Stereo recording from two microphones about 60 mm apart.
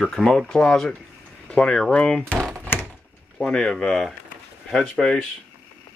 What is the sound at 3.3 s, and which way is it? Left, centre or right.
Speech, centre.